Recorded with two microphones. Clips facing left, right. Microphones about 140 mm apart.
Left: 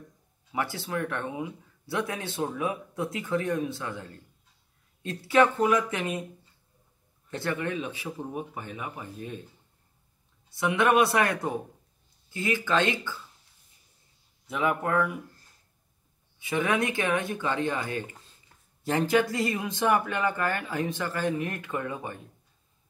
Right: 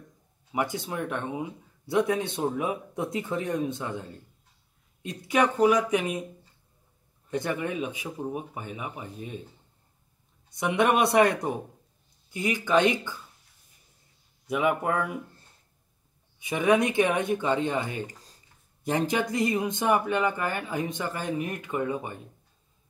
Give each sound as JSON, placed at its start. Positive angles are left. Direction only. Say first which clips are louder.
{"t": 0.5, "sound": "speech", "louder": "right 2 dB", "side_deg": -20}
{"t": 7.2, "sound": "speech", "louder": "right 1 dB", "side_deg": -15}
{"t": 10.5, "sound": "speech", "louder": "even", "side_deg": -20}
{"t": 14.5, "sound": "speech", "louder": "right 1 dB", "side_deg": -15}
{"t": 16.3, "sound": "speech", "louder": "right 4 dB", "side_deg": -20}
{"t": 18.0, "sound": "a sound", "louder": "right 4 dB", "side_deg": -40}
{"t": 18.9, "sound": "speech", "louder": "left 2 dB", "side_deg": -20}